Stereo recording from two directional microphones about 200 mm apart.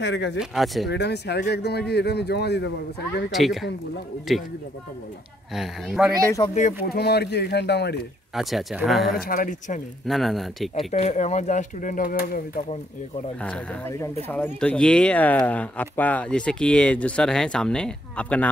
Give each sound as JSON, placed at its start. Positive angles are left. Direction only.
{"t": 0.0, "sound": "speech", "side_deg": 60}
{"t": 0.4, "sound": "speech", "side_deg": 0}
{"t": 0.8, "sound": "speech", "side_deg": 55}
{"t": 3.3, "sound": "speech", "side_deg": 0}
{"t": 5.5, "sound": "speech", "side_deg": 0}
{"t": 6.4, "sound": "speech", "side_deg": 25}
{"t": 6.9, "sound": "speech", "side_deg": 55}
{"t": 8.4, "sound": "speech", "side_deg": 0}
{"t": 9.2, "sound": "speech", "side_deg": 45}
{"t": 10.0, "sound": "speech", "side_deg": 0}
{"t": 10.9, "sound": "speech", "side_deg": 35}
{"t": 13.4, "sound": "speech", "side_deg": 10}